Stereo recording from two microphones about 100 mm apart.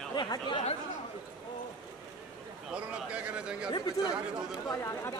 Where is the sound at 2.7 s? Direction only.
10° right (ahead or behind).